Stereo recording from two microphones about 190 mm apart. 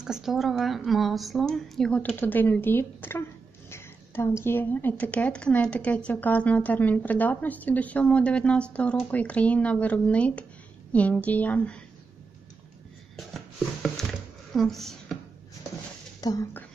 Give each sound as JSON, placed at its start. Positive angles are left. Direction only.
{"t": 0.0, "sound": "a woman's voice", "side_deg": 0}
{"t": 13.1, "sound": "a sound", "side_deg": 0}
{"t": 16.2, "sound": "speech", "side_deg": 20}